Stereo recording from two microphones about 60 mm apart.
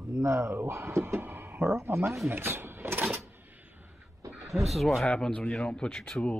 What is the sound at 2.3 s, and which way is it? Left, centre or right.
Drawer open or close, right.